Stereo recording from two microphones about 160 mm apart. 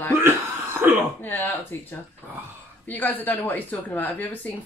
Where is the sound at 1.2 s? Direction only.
10° left (ahead or behind).